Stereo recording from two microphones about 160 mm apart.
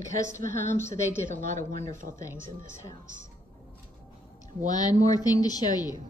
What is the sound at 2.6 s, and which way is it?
Speech, 20° left (ahead or behind).